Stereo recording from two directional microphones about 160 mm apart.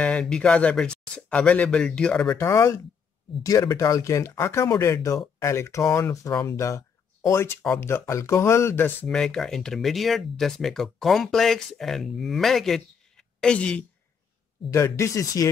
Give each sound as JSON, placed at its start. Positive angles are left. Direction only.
{"t": 0.0, "sound": "speech", "side_deg": 5}
{"t": 14.7, "sound": "speech", "side_deg": 15}